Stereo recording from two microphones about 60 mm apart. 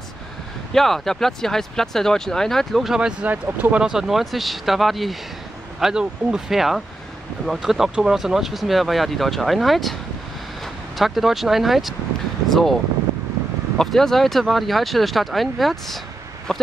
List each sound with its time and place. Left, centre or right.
0.7 s speech: centre
2.9 s speech: centre
11.0 s speech: centre
13.7 s speech: centre